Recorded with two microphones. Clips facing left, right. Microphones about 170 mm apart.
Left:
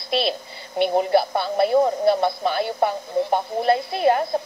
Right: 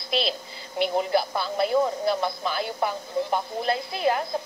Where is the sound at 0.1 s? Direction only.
60° left (ahead or behind).